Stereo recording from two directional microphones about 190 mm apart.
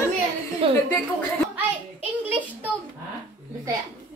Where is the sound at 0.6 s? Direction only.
30° right (ahead or behind).